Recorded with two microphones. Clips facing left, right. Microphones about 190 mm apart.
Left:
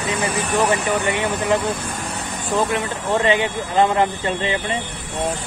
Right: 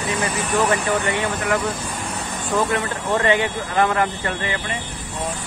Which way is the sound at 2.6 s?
20° left (ahead or behind).